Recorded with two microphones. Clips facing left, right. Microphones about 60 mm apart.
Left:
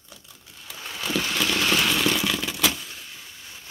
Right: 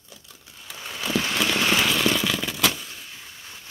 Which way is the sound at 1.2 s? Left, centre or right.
Centre.